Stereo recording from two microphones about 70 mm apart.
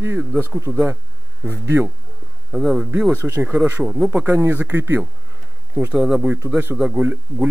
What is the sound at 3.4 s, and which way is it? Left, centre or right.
Speech, right.